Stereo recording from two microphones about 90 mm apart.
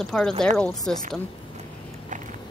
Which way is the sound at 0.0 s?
5° left (ahead or behind).